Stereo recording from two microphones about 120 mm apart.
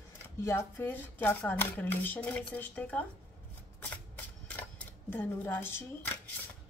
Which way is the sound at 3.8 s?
15° left (ahead or behind).